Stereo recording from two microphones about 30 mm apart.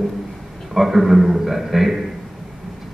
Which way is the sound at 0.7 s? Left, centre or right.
Centre.